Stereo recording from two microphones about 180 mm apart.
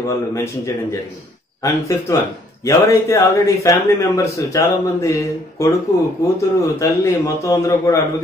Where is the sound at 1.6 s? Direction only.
20° left (ahead or behind).